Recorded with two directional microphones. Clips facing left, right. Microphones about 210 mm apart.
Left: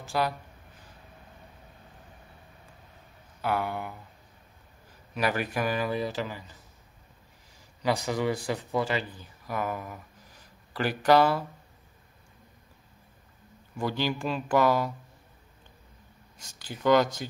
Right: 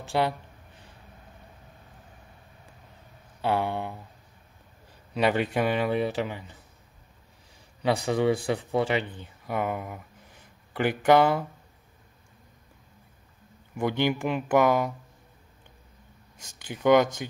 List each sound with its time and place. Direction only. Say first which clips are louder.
0.1 s speech: right 3 dB; 25° right (ahead or behind)
3.3 s speech: right 3 dB; 25° right (ahead or behind)
5.1 s speech: right 4 dB; 25° right (ahead or behind)
7.8 s speech: right 3 dB; 25° right (ahead or behind)
13.7 s speech: right 4 dB; 20° right (ahead or behind)
16.6 s speech: right 2 dB; 20° right (ahead or behind)